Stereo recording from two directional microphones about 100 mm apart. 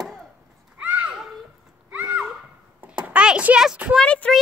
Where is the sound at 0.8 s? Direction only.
15° right (ahead or behind).